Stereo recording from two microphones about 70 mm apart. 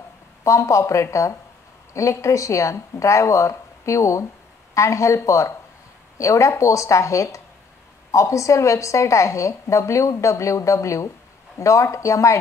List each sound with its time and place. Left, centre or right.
0.4 s a woman's voice: left